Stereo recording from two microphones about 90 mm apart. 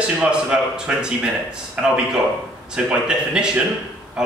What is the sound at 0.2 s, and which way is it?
Speech, 10° right (ahead or behind).